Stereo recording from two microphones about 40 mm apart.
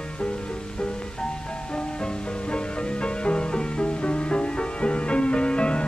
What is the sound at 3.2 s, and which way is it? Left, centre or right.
Music, left.